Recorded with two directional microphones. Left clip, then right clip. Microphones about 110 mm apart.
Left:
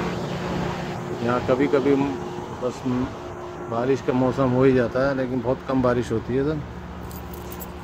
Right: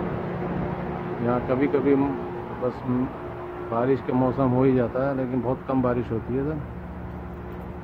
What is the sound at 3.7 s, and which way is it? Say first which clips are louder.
Speech: left 1 dB; 15° left (ahead or behind).